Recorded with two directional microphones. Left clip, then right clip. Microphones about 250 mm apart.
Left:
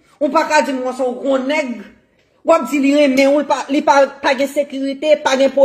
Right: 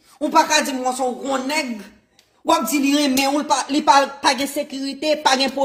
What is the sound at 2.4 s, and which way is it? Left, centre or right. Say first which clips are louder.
A man's voice: left 5 dB; right.